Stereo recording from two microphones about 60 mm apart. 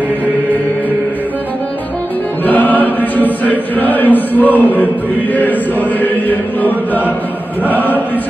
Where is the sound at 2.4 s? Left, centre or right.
Left.